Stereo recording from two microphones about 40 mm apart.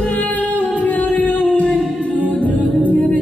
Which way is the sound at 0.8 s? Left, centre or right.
Left.